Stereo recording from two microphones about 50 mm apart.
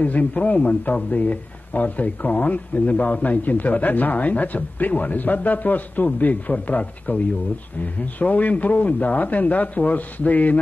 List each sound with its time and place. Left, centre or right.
0.0 s a man's voice: left